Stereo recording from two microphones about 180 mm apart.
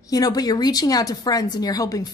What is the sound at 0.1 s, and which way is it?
A woman's voice, 20° left (ahead or behind).